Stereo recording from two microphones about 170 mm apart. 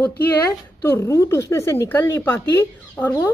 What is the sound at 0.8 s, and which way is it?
A woman's voice, 15° left (ahead or behind).